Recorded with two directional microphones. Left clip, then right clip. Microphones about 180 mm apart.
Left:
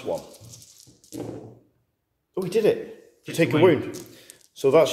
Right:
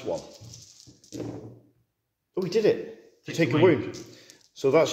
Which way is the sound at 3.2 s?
15° left (ahead or behind).